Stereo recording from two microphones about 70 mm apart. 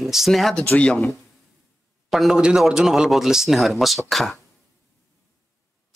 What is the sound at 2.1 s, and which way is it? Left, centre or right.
A man's voice, centre.